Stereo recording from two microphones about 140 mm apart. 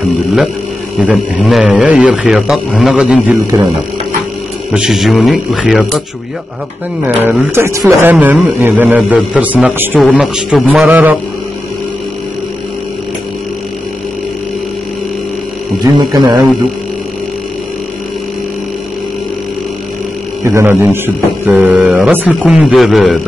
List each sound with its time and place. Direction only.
1.0 s a man's voice: 5° right (ahead or behind)
4.7 s a man's voice: 5° right (ahead or behind)
7.2 s a man's voice: 15° right (ahead or behind)
15.8 s speech: 25° right (ahead or behind)
20.4 s a man's voice: 15° right (ahead or behind); by 23.1 s centre (ahead or behind)